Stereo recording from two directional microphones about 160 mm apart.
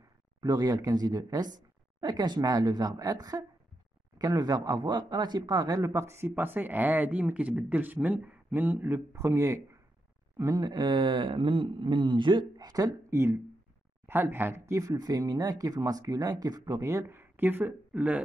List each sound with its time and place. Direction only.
0.4 s speech: 25° right (ahead or behind)